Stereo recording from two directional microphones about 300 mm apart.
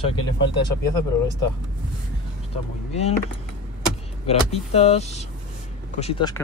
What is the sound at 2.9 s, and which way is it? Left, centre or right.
Speech, left.